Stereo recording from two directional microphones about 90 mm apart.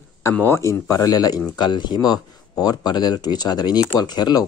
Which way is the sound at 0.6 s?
40° left (ahead or behind).